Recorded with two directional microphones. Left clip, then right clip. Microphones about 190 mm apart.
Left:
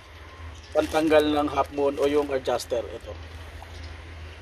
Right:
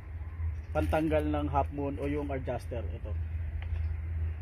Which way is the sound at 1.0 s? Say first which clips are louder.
Left 12 dB; 40° left (ahead or behind).